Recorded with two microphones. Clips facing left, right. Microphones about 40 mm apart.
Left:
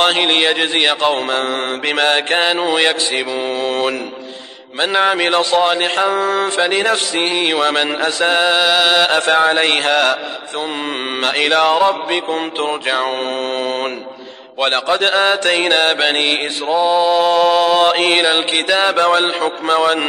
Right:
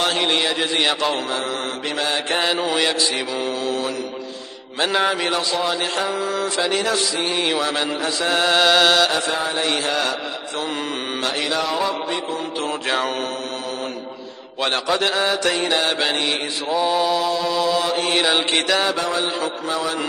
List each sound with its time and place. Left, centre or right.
0.0 s mantra: left
2.5 s mantra: left
5.0 s mantra: left
8.4 s music: centre
9.1 s mantra: left
11.2 s mantra: left
12.6 s mantra: left
14.6 s mantra: left
16.6 s mantra: left
17.2 s mantra: left
18.8 s mantra: left